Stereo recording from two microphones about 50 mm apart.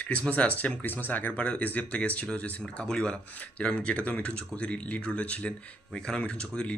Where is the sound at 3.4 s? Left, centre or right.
Left.